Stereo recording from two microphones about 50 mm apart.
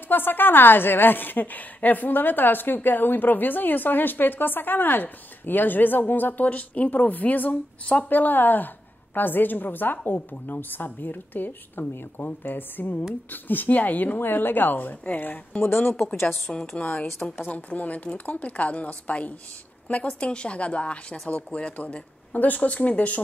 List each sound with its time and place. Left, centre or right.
0.1 s a woman's voice: left
15.6 s speech: left
16.5 s a woman's voice: centre
17.5 s speech: left